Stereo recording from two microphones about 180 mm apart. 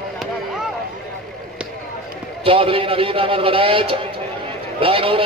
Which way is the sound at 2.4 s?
30° right (ahead or behind).